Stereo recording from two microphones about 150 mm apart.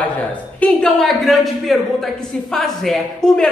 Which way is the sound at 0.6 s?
Centre (ahead or behind).